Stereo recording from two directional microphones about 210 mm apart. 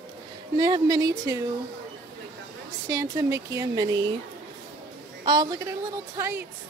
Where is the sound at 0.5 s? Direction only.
20° right (ahead or behind).